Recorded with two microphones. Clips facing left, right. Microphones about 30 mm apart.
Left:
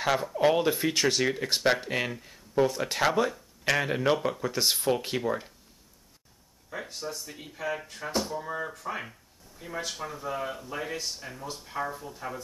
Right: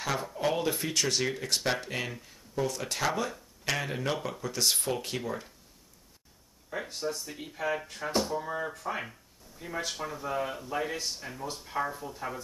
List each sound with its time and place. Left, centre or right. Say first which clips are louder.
0.4 s speech: left 6 dB; left
1.5 s speech: left 5 dB; centre
3.3 s speech: left 5 dB; centre
6.7 s speech: right 2 dB; centre